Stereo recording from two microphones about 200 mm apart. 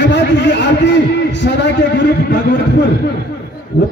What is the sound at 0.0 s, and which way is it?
A man's voice, 60° left (ahead or behind).